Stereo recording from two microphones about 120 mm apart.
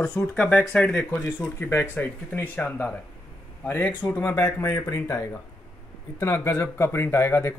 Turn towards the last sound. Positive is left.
turn(degrees=20)  # may be behind; listen again after turning